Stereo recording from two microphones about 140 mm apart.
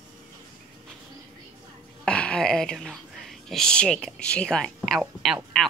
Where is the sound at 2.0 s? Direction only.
5° left (ahead or behind).